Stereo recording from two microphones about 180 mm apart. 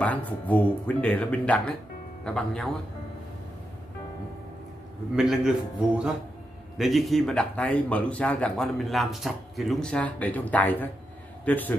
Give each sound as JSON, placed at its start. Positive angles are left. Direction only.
{"t": 0.0, "sound": "a man's voice", "side_deg": 10}
{"t": 5.1, "sound": "a man's voice", "side_deg": 0}